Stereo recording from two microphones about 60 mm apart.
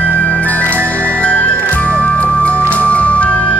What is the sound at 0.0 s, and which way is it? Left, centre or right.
Music, left.